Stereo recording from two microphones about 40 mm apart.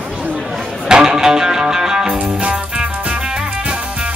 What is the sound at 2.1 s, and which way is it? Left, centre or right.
Music, right.